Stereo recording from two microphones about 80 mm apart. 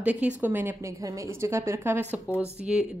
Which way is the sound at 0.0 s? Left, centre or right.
Centre.